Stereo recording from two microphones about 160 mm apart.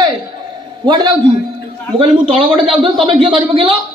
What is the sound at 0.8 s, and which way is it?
A man's voice, 30° right (ahead or behind).